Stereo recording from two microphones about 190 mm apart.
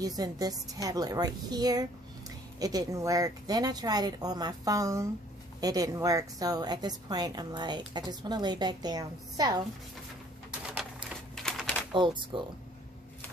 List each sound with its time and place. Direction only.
0.0 s a woman's voice: 20° right (ahead or behind)
11.3 s typewriter: centre (ahead or behind)
11.9 s a woman's voice: 25° right (ahead or behind)